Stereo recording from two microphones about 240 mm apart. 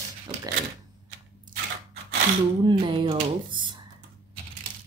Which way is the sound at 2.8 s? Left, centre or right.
Centre.